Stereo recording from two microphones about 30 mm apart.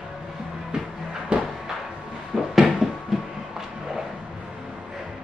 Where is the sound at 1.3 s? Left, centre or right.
Right.